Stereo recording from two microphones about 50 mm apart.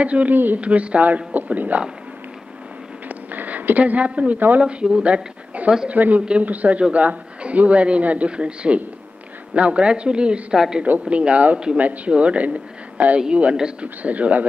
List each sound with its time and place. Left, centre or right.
0.0 s a man's voice: right
3.1 s a sound: right
4.6 s a man's voice: right
10.5 s a woman's voice: centre
11.1 s a man's voice: right